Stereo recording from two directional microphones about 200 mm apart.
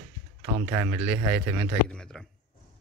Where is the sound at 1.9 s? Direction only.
5° left (ahead or behind).